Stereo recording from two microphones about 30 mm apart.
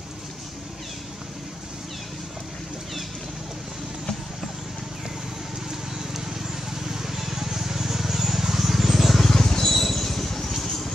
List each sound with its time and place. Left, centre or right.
6.7 s vehicle: centre
9.2 s vehicle: centre
9.8 s vehicle: centre